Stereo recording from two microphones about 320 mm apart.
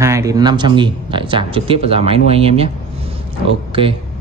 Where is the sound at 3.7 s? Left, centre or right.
Centre.